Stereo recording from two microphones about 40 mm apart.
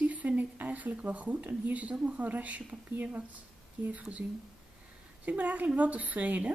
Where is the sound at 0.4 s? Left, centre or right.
Right.